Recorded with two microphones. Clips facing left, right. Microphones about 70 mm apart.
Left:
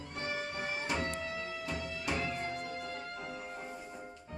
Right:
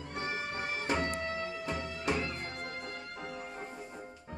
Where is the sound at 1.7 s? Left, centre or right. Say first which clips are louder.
Right 3 dB; right.